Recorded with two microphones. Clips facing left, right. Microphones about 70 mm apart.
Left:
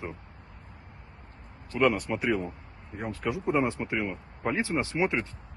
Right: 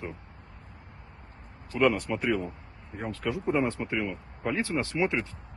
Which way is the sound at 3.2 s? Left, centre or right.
Centre.